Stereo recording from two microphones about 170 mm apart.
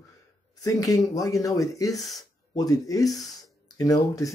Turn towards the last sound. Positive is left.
turn(degrees=20)  # may be behind; listen again after turning